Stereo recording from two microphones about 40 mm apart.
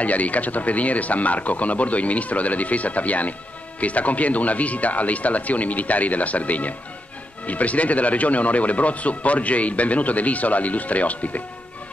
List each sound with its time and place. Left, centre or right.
0.0 s speech: left